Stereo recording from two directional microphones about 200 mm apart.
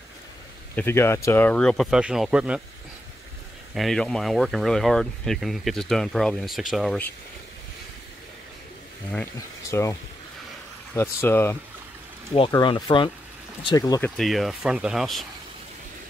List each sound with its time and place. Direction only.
0.7 s speech: 10° left (ahead or behind); by 2.6 s 5° right (ahead or behind)
3.7 s speech: centre (ahead or behind)
9.1 s speech: 10° left (ahead or behind)
11.0 s speech: 10° left (ahead or behind)
14.1 s speech: centre (ahead or behind)